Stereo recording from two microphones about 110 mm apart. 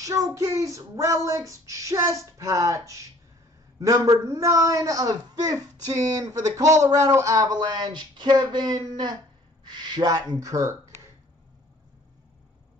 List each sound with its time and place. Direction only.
0.0 s child singing: 30° right (ahead or behind)
3.8 s a man's voice: 35° right (ahead or behind)
6.0 s child singing: 35° right (ahead or behind)